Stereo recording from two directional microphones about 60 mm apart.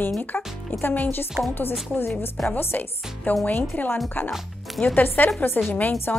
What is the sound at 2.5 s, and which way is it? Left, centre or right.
Speech, left.